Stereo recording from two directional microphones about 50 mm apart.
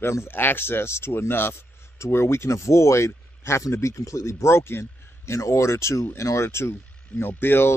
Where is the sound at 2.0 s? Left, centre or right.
Left.